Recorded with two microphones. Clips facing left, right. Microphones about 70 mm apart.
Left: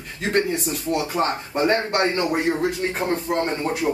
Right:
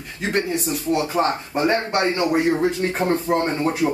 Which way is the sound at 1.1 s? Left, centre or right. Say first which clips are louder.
Right 1 dB; centre.